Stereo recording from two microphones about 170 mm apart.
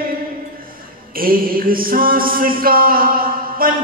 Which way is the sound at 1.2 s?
55° right (ahead or behind).